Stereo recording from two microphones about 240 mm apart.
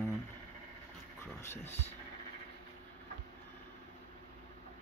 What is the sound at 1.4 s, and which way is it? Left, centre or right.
Speech, centre.